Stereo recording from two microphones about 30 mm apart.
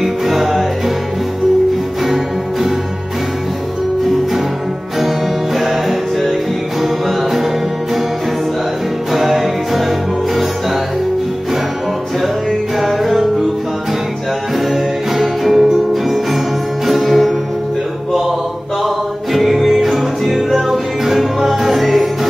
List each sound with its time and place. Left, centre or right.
0.0 s music: centre
5.0 s music: centre
9.1 s music: centre
12.7 s music: centre
14.7 s music: centre
15.5 s music: centre
16.8 s music: centre
19.3 s music: centre